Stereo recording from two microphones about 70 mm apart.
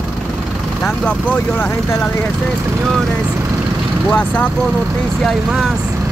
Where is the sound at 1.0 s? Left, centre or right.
Left.